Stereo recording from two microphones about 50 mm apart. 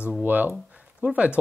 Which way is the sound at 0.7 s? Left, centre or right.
Right.